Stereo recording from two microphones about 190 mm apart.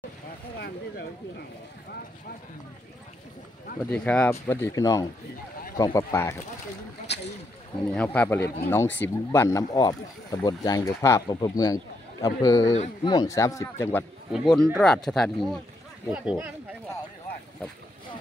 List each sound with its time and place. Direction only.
3.8 s speech: 5° left (ahead or behind)
7.9 s speech: 10° left (ahead or behind)
12.7 s speech: 35° left (ahead or behind)
13.1 s speech: 20° left (ahead or behind)
14.3 s speech: centre (ahead or behind)
16.1 s speech: 10° right (ahead or behind)